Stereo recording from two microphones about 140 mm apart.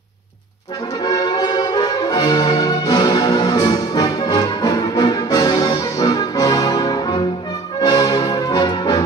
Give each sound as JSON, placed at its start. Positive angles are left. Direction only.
{"t": 1.0, "sound": "brass instrument", "side_deg": 30}
{"t": 7.8, "sound": "music", "side_deg": 30}